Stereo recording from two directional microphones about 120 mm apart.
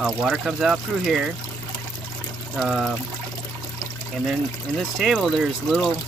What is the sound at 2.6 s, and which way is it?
Speech, centre (ahead or behind).